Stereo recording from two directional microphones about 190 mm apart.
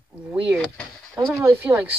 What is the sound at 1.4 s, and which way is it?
Speech, 15° right (ahead or behind).